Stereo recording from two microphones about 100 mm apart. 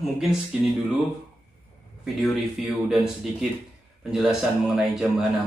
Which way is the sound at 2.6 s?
5° right (ahead or behind).